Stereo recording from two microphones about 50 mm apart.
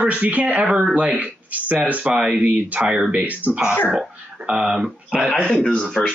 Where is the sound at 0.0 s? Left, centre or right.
Right.